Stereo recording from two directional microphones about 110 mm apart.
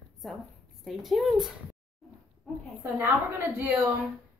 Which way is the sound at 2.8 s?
20° right (ahead or behind).